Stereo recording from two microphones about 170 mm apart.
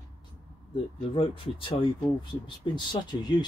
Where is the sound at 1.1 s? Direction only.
30° left (ahead or behind).